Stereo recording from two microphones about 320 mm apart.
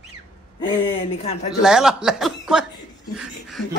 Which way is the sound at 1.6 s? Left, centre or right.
Centre.